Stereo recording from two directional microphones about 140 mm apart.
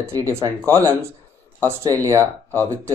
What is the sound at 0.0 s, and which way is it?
Speech, 20° right (ahead or behind).